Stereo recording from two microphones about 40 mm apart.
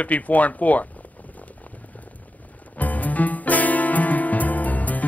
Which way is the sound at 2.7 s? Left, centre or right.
Left.